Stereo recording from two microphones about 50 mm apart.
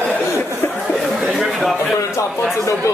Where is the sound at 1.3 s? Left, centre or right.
Centre.